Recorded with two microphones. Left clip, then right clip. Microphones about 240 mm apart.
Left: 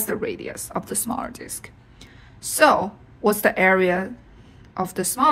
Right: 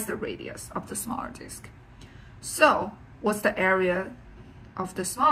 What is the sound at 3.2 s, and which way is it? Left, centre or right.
Speech, left.